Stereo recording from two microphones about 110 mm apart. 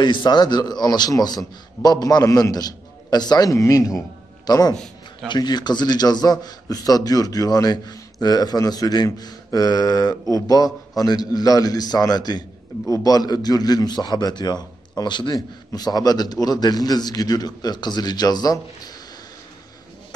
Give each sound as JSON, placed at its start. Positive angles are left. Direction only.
{"t": 0.0, "sound": "a man's voice", "side_deg": 45}